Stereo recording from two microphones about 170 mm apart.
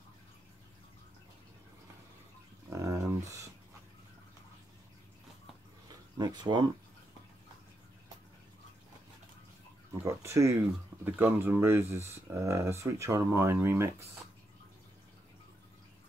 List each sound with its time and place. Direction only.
2.7 s a sound: 20° right (ahead or behind)
6.1 s speech: 25° right (ahead or behind)
10.0 s speech: 15° right (ahead or behind)